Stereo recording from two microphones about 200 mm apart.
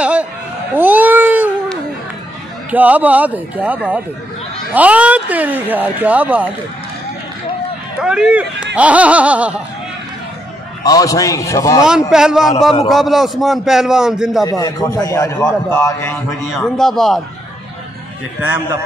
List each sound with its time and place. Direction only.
0.0 s a sound: 5° right (ahead or behind)
0.7 s cat: 10° right (ahead or behind)
2.7 s speech: 10° right (ahead or behind)
8.0 s a man's voice: 5° right (ahead or behind)
10.8 s a man's voice: 20° left (ahead or behind)
12.1 s a man's voice: 5° right (ahead or behind)
14.4 s a man's voice: 15° left (ahead or behind)
16.5 s a man's voice: centre (ahead or behind)
18.4 s speech: 10° right (ahead or behind)